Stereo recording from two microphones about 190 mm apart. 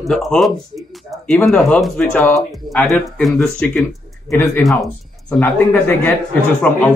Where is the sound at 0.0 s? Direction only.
Centre (ahead or behind).